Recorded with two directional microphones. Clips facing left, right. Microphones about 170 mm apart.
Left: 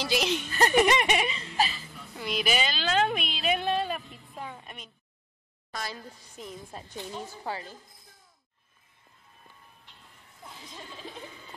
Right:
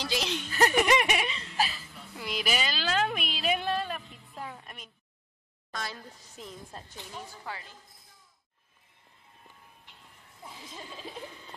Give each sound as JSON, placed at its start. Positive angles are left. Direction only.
{"t": 0.2, "sound": "a woman's voice", "side_deg": 15}
{"t": 0.5, "sound": "speech", "side_deg": -5}
{"t": 1.2, "sound": "whimper", "side_deg": 5}
{"t": 3.8, "sound": "music", "side_deg": 10}
{"t": 5.7, "sound": "a woman's voice", "side_deg": 5}
{"t": 7.1, "sound": "speech", "side_deg": 25}
{"t": 10.4, "sound": "speech", "side_deg": -5}